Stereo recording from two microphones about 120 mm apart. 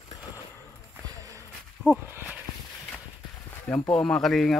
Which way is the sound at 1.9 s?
15° right (ahead or behind).